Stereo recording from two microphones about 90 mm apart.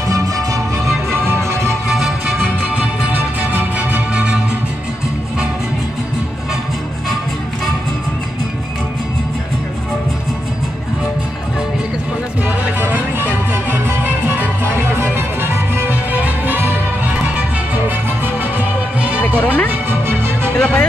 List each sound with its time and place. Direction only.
0.1 s music: 40° right (ahead or behind)
1.2 s music: 25° right (ahead or behind)
1.9 s music: centre (ahead or behind)
2.7 s music: 15° right (ahead or behind)
12.4 s music: 20° right (ahead or behind)
19.4 s music: 20° left (ahead or behind)
19.7 s music: 25° right (ahead or behind)
20.5 s music: 15° left (ahead or behind)